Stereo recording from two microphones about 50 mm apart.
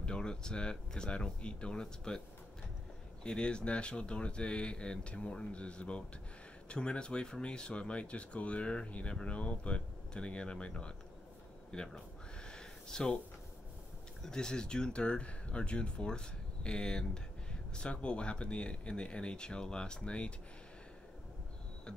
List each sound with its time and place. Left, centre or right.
0.0 s speech: centre
3.3 s speech: centre
11.7 s a sound: centre
14.2 s speech: centre